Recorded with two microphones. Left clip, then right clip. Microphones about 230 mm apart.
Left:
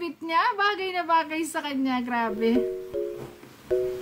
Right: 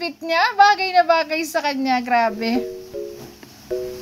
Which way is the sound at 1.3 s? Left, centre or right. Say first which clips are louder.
Right 8 dB; left.